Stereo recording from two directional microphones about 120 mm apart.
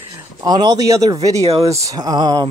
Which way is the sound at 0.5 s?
35° right (ahead or behind).